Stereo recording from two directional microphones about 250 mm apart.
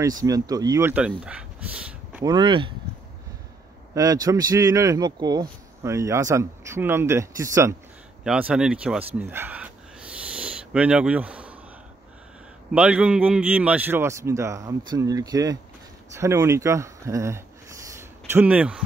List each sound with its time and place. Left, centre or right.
0.0 s speech: centre
2.3 s speech: centre
3.9 s speech: centre
12.7 s speech: centre
17.9 s a sound: centre